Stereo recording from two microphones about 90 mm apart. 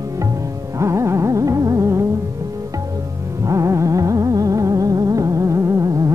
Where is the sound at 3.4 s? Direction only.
35° right (ahead or behind).